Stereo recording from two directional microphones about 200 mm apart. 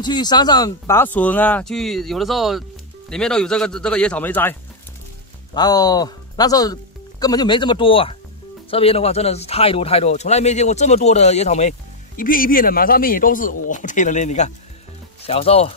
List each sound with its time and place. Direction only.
0.0 s speech: 20° left (ahead or behind)
12.2 s speech: 45° left (ahead or behind)